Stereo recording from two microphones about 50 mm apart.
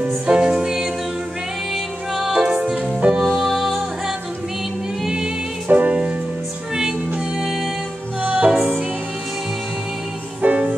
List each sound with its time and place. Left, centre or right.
0.3 s music: centre
2.1 s music: centre
3.3 s music: centre
5.0 s music: centre
5.7 s music: right
8.2 s music: right
10.4 s music: right